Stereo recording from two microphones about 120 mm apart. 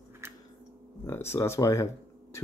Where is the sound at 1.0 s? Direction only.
20° left (ahead or behind).